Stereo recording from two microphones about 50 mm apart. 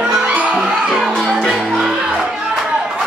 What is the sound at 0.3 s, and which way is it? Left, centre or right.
Music, right.